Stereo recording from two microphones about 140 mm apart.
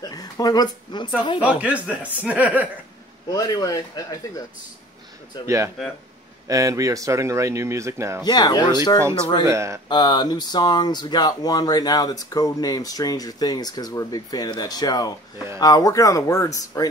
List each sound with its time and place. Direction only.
0.0 s speech: 25° left (ahead or behind)
1.4 s speech: 10° right (ahead or behind)
3.3 s speech: 30° left (ahead or behind)
6.4 s a man's voice: 25° right (ahead or behind)
8.2 s speech: 30° left (ahead or behind)
9.5 s a man's voice: 20° right (ahead or behind)
9.8 s speech: 30° left (ahead or behind)